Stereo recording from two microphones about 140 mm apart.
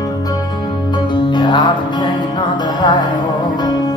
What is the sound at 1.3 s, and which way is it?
Music, 35° left (ahead or behind).